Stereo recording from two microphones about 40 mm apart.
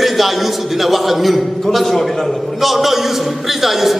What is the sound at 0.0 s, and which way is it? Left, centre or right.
A man's voice, centre.